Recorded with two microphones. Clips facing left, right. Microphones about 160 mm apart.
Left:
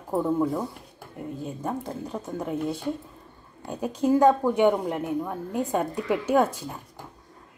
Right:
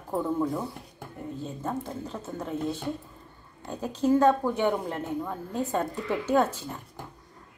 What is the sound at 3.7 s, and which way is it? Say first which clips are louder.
A woman's voice: left 1 dB; 15° left (ahead or behind).